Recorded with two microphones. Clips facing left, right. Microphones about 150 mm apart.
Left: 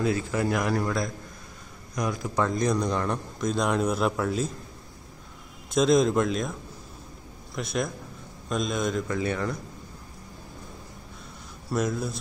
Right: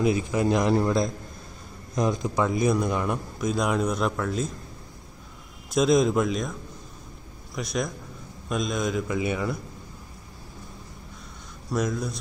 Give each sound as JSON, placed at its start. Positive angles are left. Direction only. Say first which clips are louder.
{"t": 0.0, "sound": "a man's voice", "louder": "right 3 dB", "side_deg": -15}
{"t": 5.7, "sound": "speech", "louder": "even", "side_deg": 0}
{"t": 7.5, "sound": "speech", "louder": "even", "side_deg": 0}
{"t": 9.0, "sound": "a man's voice", "louder": "right 1 dB", "side_deg": -10}
{"t": 11.7, "sound": "speech", "louder": "even", "side_deg": 5}